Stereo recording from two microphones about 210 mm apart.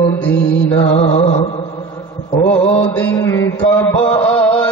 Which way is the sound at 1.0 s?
30° left (ahead or behind).